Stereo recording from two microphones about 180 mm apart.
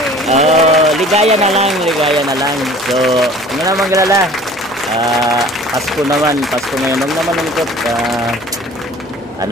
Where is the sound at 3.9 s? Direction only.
15° right (ahead or behind).